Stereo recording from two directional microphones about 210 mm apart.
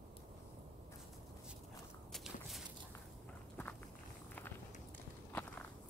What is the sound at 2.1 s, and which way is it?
Walk, centre (ahead or behind).